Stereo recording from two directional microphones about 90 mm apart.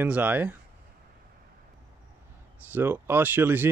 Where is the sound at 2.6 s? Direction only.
20° right (ahead or behind).